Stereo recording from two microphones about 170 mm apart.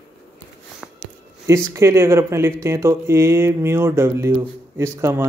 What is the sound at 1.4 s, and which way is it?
Speech, 15° right (ahead or behind).